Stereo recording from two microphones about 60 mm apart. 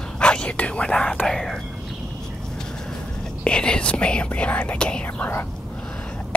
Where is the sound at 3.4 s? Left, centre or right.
Centre.